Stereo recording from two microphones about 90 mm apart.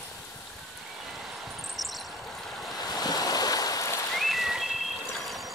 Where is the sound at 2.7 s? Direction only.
45° left (ahead or behind).